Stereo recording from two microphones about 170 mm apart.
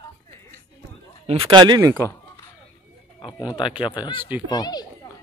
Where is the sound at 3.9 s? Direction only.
25° left (ahead or behind).